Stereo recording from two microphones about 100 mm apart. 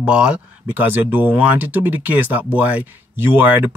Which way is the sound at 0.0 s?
10° right (ahead or behind).